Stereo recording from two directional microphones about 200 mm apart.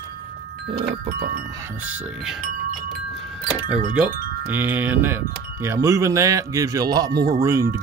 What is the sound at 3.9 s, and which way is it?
Speech, 10° right (ahead or behind).